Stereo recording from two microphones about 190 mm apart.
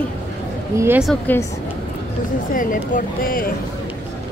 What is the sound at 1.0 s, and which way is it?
Speech, 5° left (ahead or behind).